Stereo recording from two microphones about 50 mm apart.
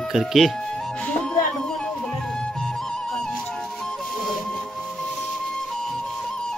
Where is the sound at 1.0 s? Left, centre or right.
Left.